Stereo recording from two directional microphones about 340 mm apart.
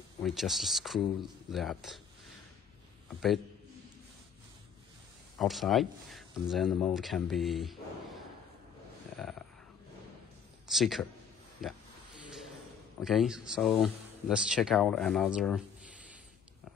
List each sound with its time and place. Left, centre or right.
0.2 s speech: centre
5.4 s speech: centre
9.1 s a sound: centre
10.7 s speech: centre
12.3 s a sound: centre
13.0 s speech: centre